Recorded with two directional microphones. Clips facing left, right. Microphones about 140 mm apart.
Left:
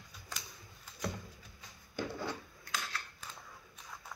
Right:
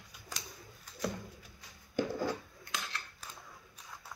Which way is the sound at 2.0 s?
45° right (ahead or behind).